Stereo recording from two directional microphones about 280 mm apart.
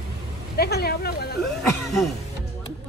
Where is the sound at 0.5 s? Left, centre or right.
Left.